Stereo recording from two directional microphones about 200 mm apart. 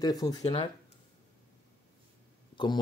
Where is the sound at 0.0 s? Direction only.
20° left (ahead or behind).